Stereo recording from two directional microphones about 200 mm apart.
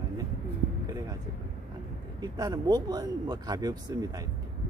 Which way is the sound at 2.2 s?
20° right (ahead or behind).